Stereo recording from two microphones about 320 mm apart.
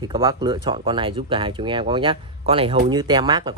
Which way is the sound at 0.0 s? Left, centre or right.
Centre.